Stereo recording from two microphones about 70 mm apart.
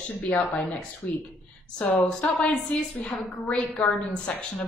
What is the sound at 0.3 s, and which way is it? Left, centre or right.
Speech, centre.